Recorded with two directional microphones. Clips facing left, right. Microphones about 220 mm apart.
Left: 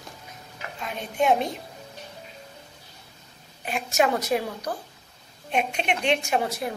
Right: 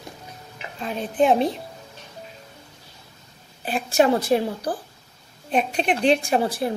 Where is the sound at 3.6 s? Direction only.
35° right (ahead or behind).